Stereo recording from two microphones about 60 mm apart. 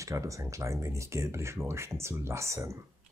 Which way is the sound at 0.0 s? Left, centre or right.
Right.